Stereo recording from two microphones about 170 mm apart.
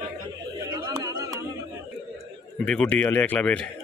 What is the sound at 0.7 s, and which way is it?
Chatter, 20° right (ahead or behind).